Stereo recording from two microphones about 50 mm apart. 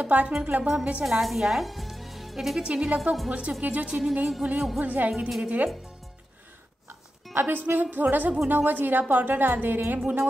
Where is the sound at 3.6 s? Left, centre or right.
Right.